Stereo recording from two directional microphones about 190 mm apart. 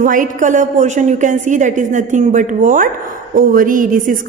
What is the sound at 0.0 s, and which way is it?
A woman's voice, 45° right (ahead or behind).